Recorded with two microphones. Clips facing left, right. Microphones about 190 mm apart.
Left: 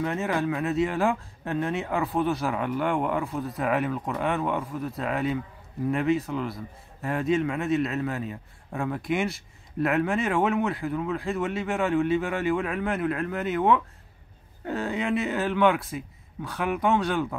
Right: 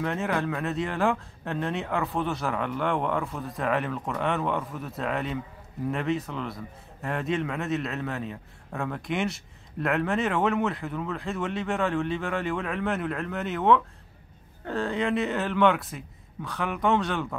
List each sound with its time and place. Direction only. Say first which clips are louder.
0.0 s a man's voice: left 1 dB; 5° left (ahead or behind)